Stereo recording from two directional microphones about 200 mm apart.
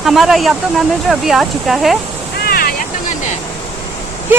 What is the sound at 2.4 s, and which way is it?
Vehicle, 50° left (ahead or behind).